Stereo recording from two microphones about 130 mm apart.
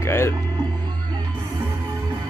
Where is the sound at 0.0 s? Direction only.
20° left (ahead or behind).